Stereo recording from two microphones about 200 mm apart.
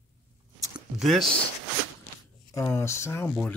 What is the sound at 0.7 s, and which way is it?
Speech, centre (ahead or behind).